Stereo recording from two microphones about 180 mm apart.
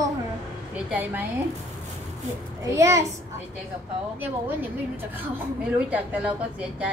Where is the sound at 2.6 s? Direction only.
15° right (ahead or behind).